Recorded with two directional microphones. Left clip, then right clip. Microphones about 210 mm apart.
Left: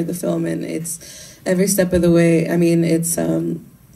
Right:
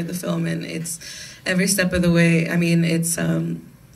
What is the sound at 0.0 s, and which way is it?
Speech, 60° left (ahead or behind).